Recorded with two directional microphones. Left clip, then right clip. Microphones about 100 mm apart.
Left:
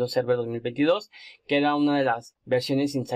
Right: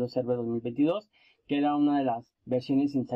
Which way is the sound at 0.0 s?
40° right (ahead or behind).